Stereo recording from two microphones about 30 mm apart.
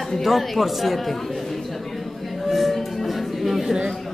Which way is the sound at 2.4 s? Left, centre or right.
Centre.